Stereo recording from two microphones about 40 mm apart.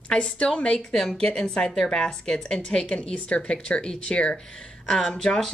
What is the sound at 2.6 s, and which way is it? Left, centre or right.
Speech, left.